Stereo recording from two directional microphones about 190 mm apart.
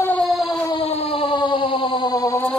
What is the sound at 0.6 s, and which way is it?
Siren, 25° left (ahead or behind).